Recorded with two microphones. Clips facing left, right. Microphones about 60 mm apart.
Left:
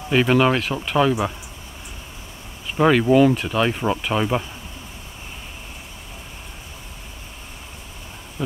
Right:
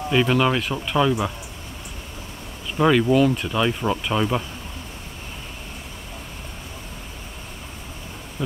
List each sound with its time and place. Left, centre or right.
0.1 s speech: centre
0.6 s speech: centre
2.8 s speech: centre
8.4 s speech: centre